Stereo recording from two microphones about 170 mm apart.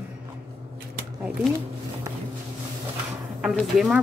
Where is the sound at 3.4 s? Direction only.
5° right (ahead or behind).